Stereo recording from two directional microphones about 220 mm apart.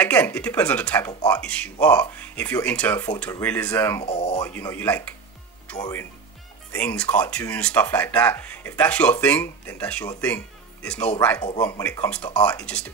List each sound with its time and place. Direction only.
0.0 s speech: 5° left (ahead or behind)
4.0 s speech: 25° left (ahead or behind)
4.4 s speech: 10° left (ahead or behind)